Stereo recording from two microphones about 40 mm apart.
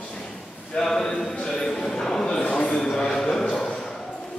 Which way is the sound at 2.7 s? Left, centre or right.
Centre.